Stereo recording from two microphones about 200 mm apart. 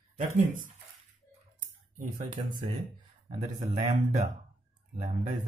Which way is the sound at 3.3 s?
35° right (ahead or behind).